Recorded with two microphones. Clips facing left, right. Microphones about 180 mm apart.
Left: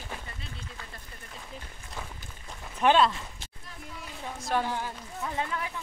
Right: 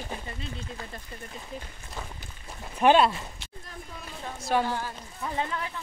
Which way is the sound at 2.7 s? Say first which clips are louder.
Right 2 dB; 15° right (ahead or behind).